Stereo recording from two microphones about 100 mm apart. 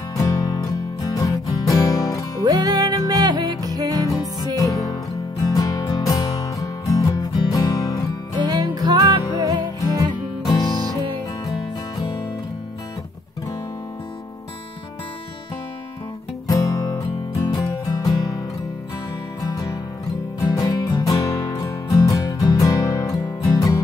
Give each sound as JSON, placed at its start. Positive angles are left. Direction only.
{"t": 0.2, "sound": "music", "side_deg": 35}
{"t": 2.4, "sound": "music", "side_deg": -40}
{"t": 4.1, "sound": "music", "side_deg": 35}
{"t": 8.4, "sound": "music", "side_deg": -45}
{"t": 10.5, "sound": "music", "side_deg": 45}
{"t": 12.0, "sound": "music", "side_deg": 45}
{"t": 16.4, "sound": "music", "side_deg": 30}
{"t": 19.4, "sound": "music", "side_deg": 40}